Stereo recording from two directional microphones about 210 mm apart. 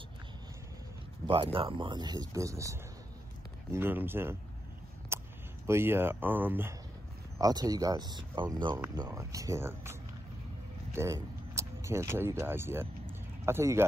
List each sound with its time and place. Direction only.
1.2 s speech: 25° right (ahead or behind)
5.1 s a sound: 10° right (ahead or behind)
5.7 s speech: 10° right (ahead or behind)